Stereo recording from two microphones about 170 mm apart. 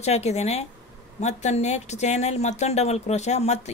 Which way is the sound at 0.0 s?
40° left (ahead or behind).